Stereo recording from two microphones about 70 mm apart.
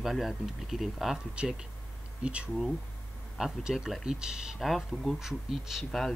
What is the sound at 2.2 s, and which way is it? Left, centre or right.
Speech, centre.